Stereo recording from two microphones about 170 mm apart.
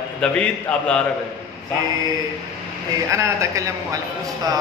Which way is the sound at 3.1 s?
15° right (ahead or behind).